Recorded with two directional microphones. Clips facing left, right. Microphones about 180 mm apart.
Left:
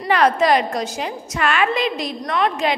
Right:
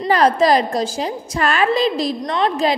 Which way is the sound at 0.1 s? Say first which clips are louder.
Right 2 dB; 35° right (ahead or behind).